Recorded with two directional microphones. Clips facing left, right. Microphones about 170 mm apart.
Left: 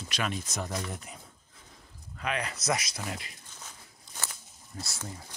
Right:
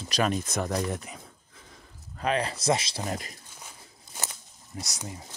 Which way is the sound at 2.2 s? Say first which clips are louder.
Right 6 dB; 30° right (ahead or behind).